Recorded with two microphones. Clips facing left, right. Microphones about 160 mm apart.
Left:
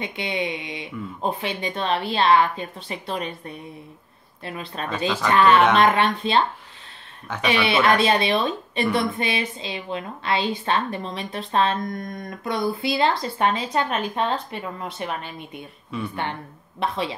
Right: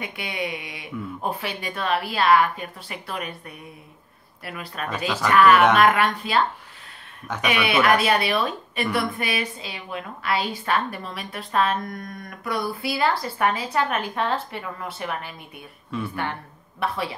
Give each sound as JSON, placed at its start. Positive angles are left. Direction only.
{"t": 0.0, "sound": "speech", "side_deg": 25}
{"t": 4.9, "sound": "speech", "side_deg": -10}
{"t": 5.3, "sound": "speech", "side_deg": 25}
{"t": 7.4, "sound": "speech", "side_deg": 30}
{"t": 16.8, "sound": "speech", "side_deg": 20}